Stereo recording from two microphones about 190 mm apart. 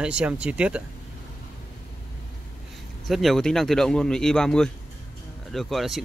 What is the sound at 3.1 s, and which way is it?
Speech, centre (ahead or behind).